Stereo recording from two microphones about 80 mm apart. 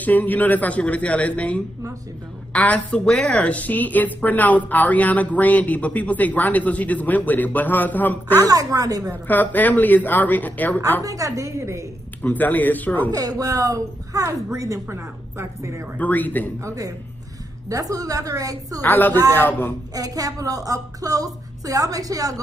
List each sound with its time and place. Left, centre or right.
0.0 s a man's voice: left
8.4 s a woman's voice: right
9.3 s a woman's voice: left
11.1 s a woman's voice: right
12.2 s a woman's voice: left
13.1 s a woman's voice: right
16.0 s a woman's voice: left
16.5 s a woman's voice: right
18.8 s a woman's voice: left
19.9 s a woman's voice: right